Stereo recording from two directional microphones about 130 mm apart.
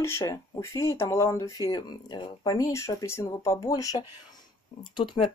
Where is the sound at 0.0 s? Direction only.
20° left (ahead or behind).